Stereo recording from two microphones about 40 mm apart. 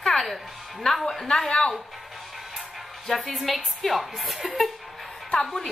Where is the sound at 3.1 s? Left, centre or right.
Centre.